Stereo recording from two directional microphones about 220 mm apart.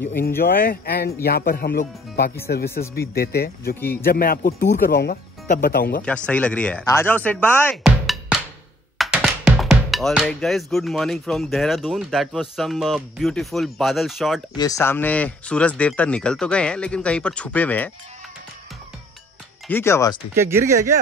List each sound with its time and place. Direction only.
0.4 s speech: 40° left (ahead or behind)
6.0 s speech: 5° left (ahead or behind)
14.6 s speech: 15° left (ahead or behind)
19.7 s speech: 10° left (ahead or behind)
20.3 s speech: 10° right (ahead or behind)